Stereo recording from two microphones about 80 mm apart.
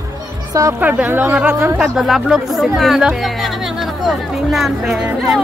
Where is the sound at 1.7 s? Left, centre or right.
Centre.